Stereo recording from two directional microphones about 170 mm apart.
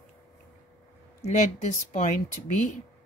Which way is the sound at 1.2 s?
45° left (ahead or behind).